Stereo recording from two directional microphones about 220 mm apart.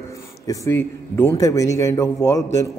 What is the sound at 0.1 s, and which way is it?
A man's voice, 15° left (ahead or behind).